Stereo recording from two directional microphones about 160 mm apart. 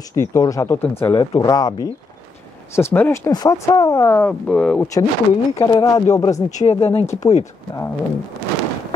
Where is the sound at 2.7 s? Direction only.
15° left (ahead or behind).